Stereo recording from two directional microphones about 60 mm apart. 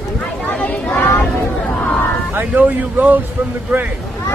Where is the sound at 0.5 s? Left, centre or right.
Left.